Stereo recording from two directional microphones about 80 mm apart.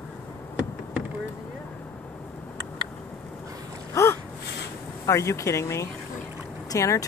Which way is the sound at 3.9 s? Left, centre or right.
Left.